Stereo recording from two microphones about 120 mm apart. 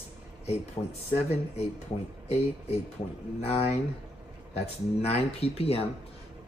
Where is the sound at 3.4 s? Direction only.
60° left (ahead or behind).